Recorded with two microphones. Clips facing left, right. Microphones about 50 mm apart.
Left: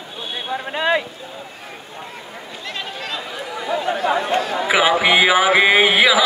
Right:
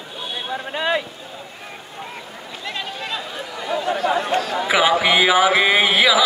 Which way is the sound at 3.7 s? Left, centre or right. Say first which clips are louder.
Left 1 dB; centre.